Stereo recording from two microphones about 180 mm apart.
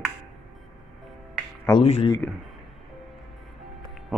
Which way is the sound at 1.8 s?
35° left (ahead or behind).